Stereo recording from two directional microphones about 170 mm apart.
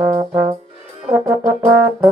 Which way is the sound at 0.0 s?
20° right (ahead or behind).